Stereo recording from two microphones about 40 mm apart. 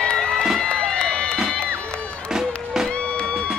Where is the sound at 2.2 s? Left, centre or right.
Centre.